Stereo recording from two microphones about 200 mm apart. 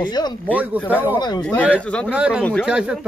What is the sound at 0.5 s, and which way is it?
Speech, 5° right (ahead or behind).